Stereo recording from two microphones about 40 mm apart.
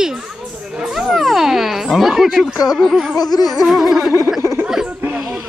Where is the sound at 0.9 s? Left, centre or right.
Centre.